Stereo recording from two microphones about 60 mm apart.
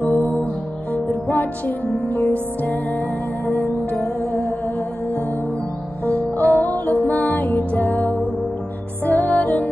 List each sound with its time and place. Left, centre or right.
0.0 s music: left
3.4 s music: left
6.0 s music: left